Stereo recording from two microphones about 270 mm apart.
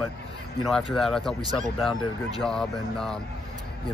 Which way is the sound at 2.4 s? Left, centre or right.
Centre.